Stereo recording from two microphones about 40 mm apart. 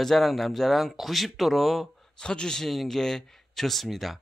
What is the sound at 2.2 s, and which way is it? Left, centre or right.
Speech, left.